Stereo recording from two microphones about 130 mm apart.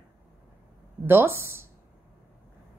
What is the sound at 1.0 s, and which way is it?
Speech, 20° right (ahead or behind).